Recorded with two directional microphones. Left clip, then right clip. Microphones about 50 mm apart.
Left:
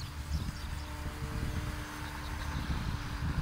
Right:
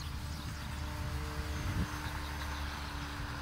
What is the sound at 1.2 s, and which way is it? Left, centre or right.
Vehicle, right.